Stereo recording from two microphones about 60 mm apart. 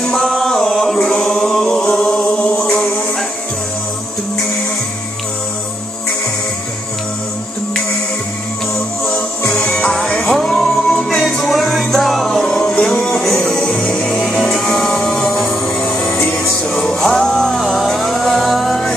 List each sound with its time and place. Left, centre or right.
0.0 s chant: centre
1.7 s a sound: centre
9.6 s music: centre
12.4 s music: centre
13.1 s music: centre